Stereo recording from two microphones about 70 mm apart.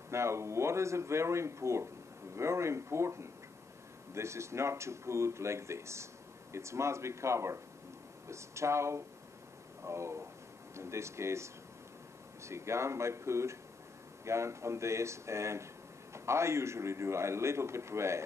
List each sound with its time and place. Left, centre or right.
0.1 s speech: right